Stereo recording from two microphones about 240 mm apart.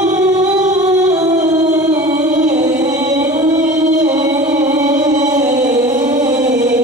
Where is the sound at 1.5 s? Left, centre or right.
Centre.